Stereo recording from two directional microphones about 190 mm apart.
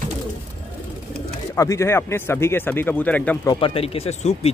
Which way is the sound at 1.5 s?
15° left (ahead or behind).